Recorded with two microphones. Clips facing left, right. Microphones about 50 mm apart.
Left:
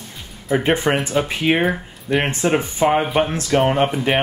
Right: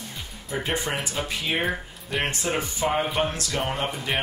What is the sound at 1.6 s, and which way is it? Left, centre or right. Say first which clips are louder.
Speech: left 7 dB; centre.